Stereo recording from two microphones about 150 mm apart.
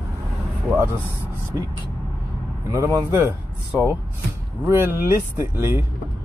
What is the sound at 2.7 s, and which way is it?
Speech, 20° right (ahead or behind).